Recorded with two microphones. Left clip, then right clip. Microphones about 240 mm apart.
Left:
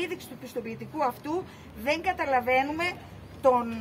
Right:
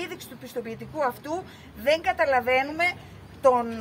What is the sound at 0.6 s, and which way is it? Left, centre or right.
A woman's voice, centre.